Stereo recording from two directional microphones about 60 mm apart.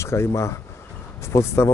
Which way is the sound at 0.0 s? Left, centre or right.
Left.